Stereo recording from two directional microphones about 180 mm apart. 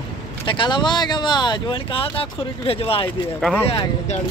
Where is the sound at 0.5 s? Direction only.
25° left (ahead or behind).